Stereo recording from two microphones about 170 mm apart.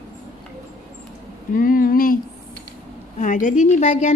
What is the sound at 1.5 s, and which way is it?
Speech, 55° left (ahead or behind).